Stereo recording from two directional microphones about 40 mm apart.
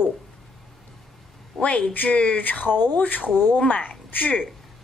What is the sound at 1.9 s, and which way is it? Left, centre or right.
Speech, left.